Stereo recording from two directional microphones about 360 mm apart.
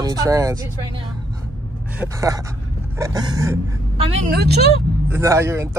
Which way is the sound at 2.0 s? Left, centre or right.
Centre.